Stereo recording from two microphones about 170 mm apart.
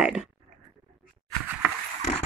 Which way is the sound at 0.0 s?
5° right (ahead or behind).